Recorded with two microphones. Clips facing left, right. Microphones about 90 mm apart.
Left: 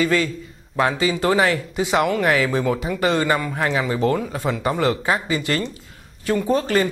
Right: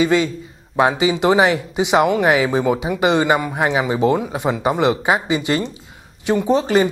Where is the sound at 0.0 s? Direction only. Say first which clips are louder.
Right 3 dB; 20° right (ahead or behind).